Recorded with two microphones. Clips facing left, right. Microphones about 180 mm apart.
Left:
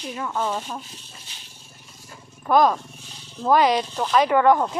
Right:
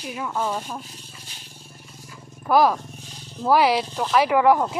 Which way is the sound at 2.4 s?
5° right (ahead or behind).